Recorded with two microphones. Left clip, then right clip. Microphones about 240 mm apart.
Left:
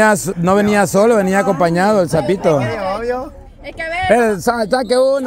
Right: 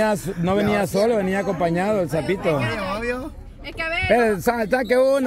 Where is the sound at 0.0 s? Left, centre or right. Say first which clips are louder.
Left 8 dB; left.